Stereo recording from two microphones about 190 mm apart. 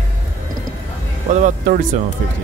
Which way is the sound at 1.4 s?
45° right (ahead or behind).